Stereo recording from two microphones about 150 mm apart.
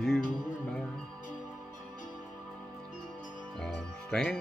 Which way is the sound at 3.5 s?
5° left (ahead or behind).